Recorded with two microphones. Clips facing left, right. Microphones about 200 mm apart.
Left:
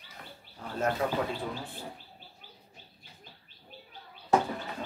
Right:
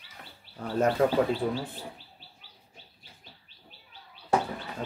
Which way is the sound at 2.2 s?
50° left (ahead or behind).